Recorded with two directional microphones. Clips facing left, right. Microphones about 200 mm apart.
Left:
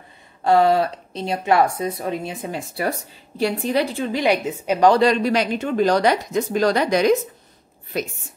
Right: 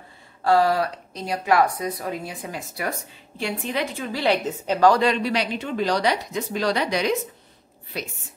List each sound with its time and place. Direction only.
0.4 s a woman's voice: 20° left (ahead or behind)
4.1 s a woman's voice: 15° left (ahead or behind)
4.9 s a woman's voice: 40° left (ahead or behind)